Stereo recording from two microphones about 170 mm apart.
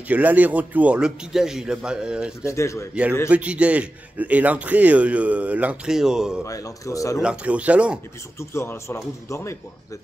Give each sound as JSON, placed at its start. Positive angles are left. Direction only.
{"t": 0.1, "sound": "a man's voice", "side_deg": -10}
{"t": 2.4, "sound": "speech", "side_deg": 15}
{"t": 2.9, "sound": "a man's voice", "side_deg": -10}
{"t": 6.4, "sound": "speech", "side_deg": 20}
{"t": 7.2, "sound": "a man's voice", "side_deg": -5}
{"t": 8.4, "sound": "speech", "side_deg": 15}